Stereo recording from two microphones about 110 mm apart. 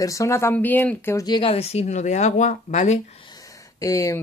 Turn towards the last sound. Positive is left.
turn(degrees=30)  # may be behind; listen again after turning